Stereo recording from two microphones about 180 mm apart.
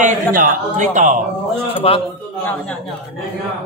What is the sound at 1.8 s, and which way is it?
Speech, 35° left (ahead or behind).